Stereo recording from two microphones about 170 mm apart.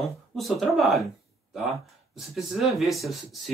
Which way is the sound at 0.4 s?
Centre (ahead or behind).